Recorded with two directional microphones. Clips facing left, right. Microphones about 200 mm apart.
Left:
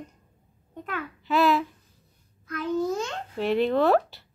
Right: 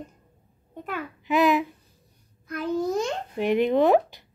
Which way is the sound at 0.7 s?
5° right (ahead or behind).